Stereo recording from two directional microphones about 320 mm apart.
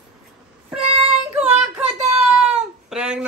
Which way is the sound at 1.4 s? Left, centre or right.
Right.